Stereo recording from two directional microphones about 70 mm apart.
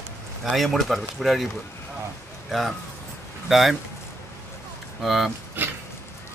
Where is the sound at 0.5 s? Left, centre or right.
Centre.